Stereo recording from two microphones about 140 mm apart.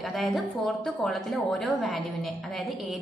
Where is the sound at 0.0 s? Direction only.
Centre (ahead or behind).